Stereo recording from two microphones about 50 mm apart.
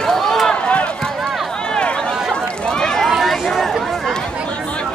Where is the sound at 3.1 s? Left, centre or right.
Centre.